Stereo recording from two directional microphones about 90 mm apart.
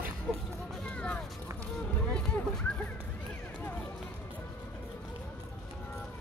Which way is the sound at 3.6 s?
15° left (ahead or behind).